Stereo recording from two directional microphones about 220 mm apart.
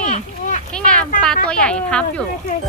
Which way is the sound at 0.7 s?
5° left (ahead or behind).